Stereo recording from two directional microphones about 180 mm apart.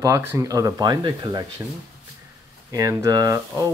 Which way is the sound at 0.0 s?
15° right (ahead or behind).